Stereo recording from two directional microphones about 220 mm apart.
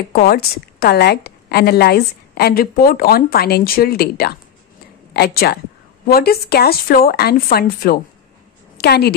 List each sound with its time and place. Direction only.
0.1 s a woman's voice: 45° left (ahead or behind)